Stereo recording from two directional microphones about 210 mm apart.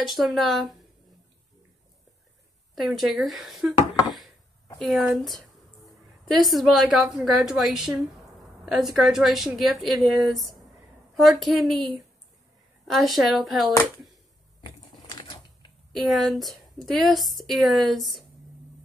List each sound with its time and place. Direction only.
0.0 s speech: centre (ahead or behind)
2.7 s a woman's voice: centre (ahead or behind)
14.6 s a sound: 20° left (ahead or behind)
15.9 s speech: centre (ahead or behind)